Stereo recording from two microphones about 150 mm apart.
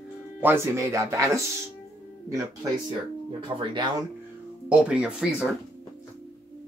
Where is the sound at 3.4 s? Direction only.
30° right (ahead or behind).